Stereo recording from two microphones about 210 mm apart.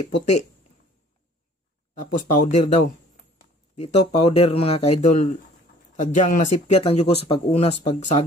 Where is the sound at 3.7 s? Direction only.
25° left (ahead or behind).